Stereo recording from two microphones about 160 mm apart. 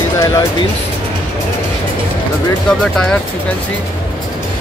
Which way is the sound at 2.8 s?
5° left (ahead or behind).